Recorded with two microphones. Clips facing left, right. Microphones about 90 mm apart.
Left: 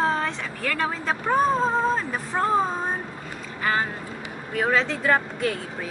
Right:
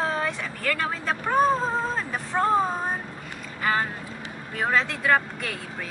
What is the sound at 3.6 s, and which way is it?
Vehicle, centre (ahead or behind).